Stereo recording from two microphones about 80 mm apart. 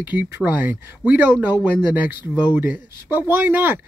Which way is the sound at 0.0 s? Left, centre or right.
Right.